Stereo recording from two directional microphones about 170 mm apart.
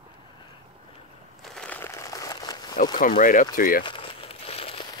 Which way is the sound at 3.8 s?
30° left (ahead or behind).